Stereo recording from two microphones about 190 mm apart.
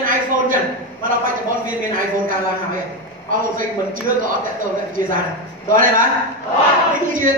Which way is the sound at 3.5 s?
45° right (ahead or behind).